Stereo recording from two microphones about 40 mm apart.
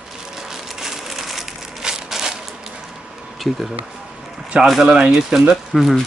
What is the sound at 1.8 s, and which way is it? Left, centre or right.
Crushing, centre.